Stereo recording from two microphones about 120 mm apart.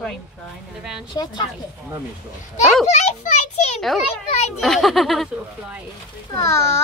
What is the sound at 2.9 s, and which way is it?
Speech, 75° left (ahead or behind).